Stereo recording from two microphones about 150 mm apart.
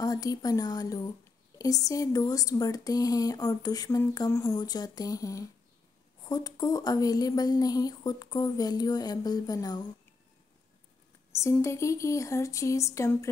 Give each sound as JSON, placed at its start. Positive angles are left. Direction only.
{"t": 0.0, "sound": "speech", "side_deg": 25}
{"t": 11.6, "sound": "speech", "side_deg": 20}